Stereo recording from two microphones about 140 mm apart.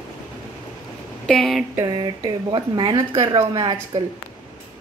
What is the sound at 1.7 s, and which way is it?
Speech, 30° right (ahead or behind).